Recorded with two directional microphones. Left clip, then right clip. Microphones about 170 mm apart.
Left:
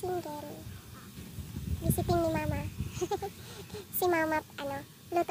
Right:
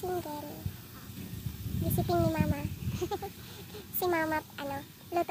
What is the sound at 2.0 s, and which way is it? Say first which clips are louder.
Speech: even; 15° left (ahead or behind).